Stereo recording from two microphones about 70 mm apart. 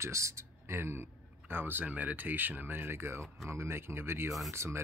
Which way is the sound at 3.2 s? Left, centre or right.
Centre.